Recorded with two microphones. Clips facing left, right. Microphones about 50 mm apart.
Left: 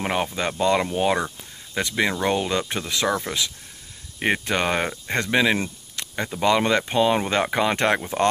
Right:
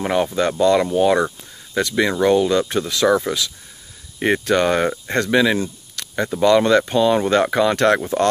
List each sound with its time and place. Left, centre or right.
0.0 s speech: centre
4.2 s speech: centre
5.9 s a sound: centre
6.4 s speech: centre